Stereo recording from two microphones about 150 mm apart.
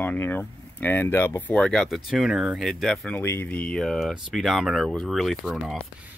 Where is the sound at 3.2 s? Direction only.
15° left (ahead or behind).